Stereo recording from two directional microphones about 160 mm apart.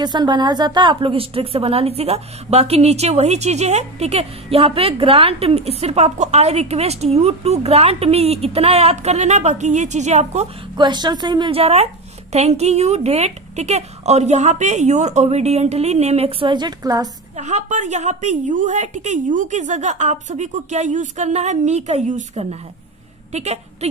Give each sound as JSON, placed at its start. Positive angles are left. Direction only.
{"t": 0.0, "sound": "a woman's voice", "side_deg": -25}
{"t": 10.8, "sound": "a woman's voice", "side_deg": -25}
{"t": 17.4, "sound": "a woman's voice", "side_deg": -45}